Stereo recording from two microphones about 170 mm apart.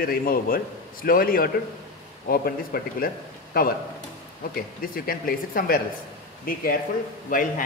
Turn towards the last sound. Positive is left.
turn(degrees=55)  # may be behind; listen again after turning